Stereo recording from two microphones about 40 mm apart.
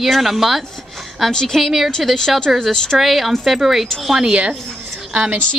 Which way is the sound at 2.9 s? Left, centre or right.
Centre.